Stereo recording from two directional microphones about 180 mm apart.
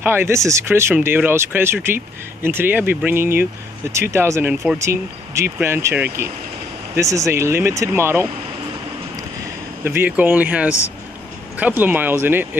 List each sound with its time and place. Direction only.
0.0 s speech: 15° right (ahead or behind)
9.8 s speech: 10° right (ahead or behind)